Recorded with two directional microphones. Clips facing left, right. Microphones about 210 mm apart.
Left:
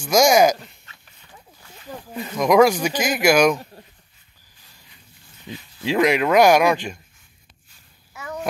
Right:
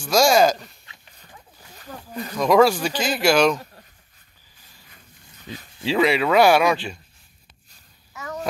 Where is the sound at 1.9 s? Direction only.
15° left (ahead or behind).